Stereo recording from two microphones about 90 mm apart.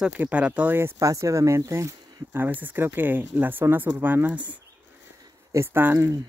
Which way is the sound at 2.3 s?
20° right (ahead or behind).